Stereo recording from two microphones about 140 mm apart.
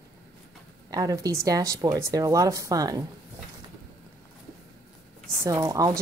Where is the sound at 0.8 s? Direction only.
25° right (ahead or behind).